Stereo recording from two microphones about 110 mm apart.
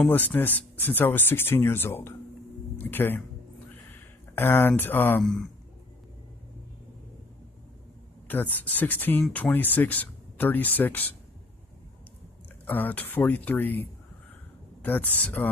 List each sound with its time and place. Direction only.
0.0 s speech: 15° left (ahead or behind)
3.6 s a sound: 20° left (ahead or behind)
5.2 s a man's voice: centre (ahead or behind)
8.3 s speech: 15° left (ahead or behind)
12.6 s speech: 15° left (ahead or behind)